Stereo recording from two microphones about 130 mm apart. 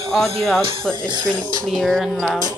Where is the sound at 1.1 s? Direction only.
30° right (ahead or behind).